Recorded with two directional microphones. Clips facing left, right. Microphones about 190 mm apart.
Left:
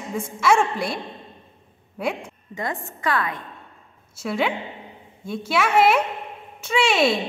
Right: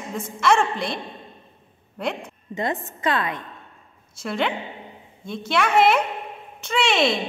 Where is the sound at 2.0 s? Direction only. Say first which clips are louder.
Left 1 dB; 10° left (ahead or behind).